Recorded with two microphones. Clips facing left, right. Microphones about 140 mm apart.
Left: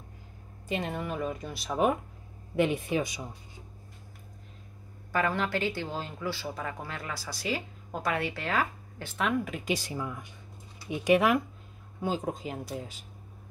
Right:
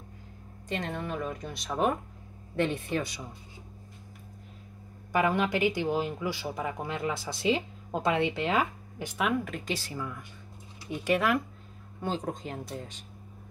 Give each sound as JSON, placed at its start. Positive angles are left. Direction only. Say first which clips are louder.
{"t": 0.7, "sound": "speech", "louder": "left 1 dB", "side_deg": 5}
{"t": 5.1, "sound": "speech", "louder": "right 3 dB", "side_deg": -15}
{"t": 9.7, "sound": "speech", "louder": "left 3 dB", "side_deg": 15}